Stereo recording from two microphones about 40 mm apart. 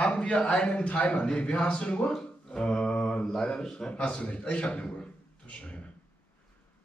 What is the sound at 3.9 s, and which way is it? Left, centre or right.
Speech, left.